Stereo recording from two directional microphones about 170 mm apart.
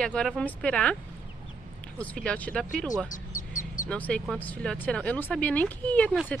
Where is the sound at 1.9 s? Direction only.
5° left (ahead or behind).